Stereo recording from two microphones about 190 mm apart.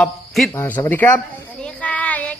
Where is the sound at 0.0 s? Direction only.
Centre (ahead or behind).